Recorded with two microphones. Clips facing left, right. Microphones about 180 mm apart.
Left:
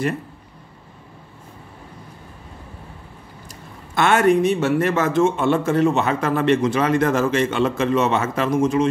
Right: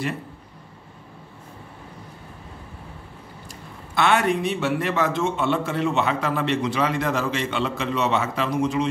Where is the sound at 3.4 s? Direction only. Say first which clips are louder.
Even; 50° left (ahead or behind).